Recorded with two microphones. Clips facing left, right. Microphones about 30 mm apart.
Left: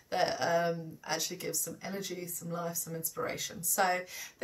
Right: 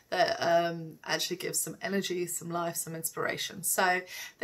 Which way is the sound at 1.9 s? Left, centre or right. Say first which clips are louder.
Right 10 dB; right.